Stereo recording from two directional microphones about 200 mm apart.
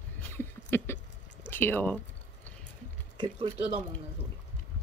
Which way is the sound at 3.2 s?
25° right (ahead or behind).